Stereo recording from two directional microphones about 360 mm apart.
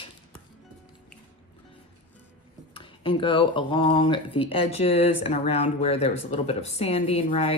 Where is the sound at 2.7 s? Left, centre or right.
Centre.